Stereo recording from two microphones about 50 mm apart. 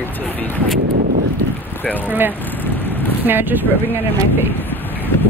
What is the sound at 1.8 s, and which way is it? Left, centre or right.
Speech, left.